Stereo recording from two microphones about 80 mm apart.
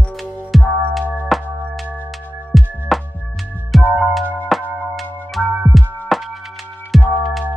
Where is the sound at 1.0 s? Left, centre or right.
Left.